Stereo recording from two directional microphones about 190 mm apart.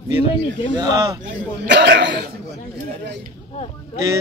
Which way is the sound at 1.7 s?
65° right (ahead or behind).